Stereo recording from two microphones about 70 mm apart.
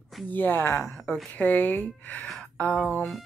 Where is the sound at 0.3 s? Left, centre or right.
Left.